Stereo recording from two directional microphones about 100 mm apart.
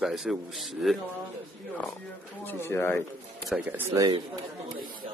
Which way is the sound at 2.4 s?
20° left (ahead or behind).